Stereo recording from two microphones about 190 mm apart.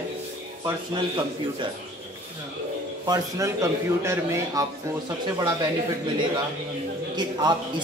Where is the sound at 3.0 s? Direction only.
20° right (ahead or behind).